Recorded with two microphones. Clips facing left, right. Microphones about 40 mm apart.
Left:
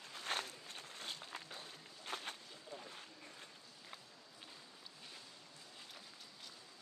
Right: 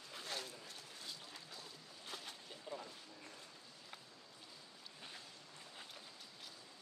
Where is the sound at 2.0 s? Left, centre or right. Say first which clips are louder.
Left 5 dB; left.